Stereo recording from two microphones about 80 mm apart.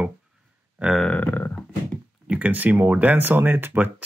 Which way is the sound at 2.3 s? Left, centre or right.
Centre.